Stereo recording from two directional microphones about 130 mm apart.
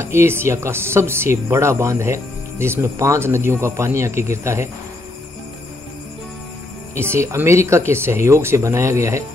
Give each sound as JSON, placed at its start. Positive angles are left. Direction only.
{"t": 0.0, "sound": "speech", "side_deg": -20}
{"t": 7.0, "sound": "speech", "side_deg": -20}